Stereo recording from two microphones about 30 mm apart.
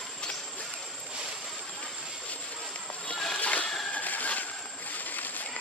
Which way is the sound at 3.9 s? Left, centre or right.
Left.